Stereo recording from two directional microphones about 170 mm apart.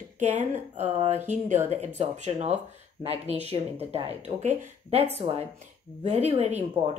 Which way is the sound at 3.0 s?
35° right (ahead or behind).